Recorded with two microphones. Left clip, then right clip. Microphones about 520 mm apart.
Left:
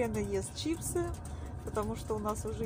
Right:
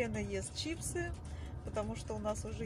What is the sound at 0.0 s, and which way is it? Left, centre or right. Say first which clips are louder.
Speech: left 5 dB; right.